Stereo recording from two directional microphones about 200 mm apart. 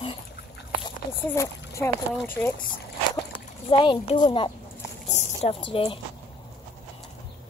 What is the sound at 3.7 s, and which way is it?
Speech, 25° left (ahead or behind).